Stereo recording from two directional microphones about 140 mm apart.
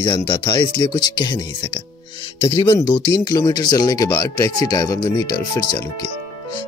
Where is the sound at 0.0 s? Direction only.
35° left (ahead or behind).